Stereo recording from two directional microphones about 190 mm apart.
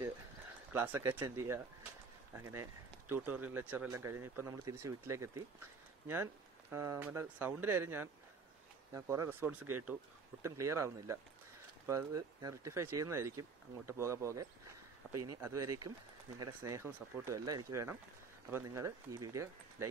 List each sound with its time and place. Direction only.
0.7 s speech: 10° right (ahead or behind)